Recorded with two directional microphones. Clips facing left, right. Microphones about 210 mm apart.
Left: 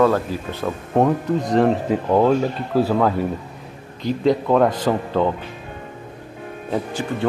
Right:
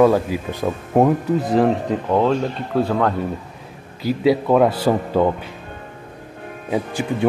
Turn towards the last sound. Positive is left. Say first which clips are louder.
# right 2 dB
turn(degrees=-10)  # may be behind; listen again after turning